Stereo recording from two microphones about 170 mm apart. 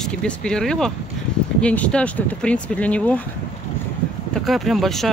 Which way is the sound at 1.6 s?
5° left (ahead or behind).